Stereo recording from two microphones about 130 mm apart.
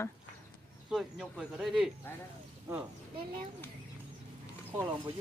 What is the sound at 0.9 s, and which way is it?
Speech, 5° right (ahead or behind).